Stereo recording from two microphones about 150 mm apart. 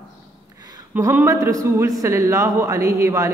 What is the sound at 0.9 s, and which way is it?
A man's voice, 15° right (ahead or behind).